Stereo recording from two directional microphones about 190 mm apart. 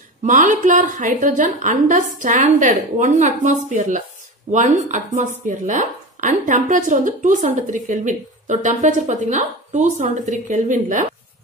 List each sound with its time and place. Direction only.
0.2 s speech: 40° right (ahead or behind)